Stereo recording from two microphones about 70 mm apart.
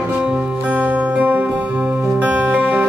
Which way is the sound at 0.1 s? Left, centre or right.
Centre.